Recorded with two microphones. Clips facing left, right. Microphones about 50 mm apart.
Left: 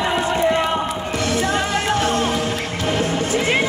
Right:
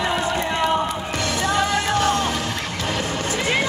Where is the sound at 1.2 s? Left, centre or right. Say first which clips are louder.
Left 1 dB; left.